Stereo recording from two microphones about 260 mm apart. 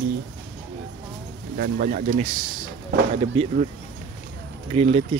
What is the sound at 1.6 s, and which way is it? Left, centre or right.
Speech, right.